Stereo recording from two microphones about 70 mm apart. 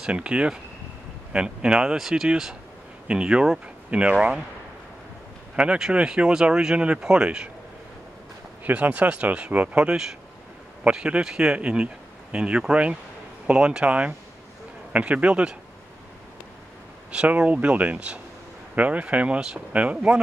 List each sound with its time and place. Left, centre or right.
0.0 s speech: centre
5.6 s speech: centre
8.6 s speech: right
17.1 s speech: centre